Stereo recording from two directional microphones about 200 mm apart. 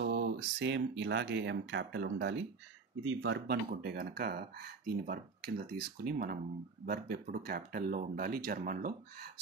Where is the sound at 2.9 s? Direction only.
85° right.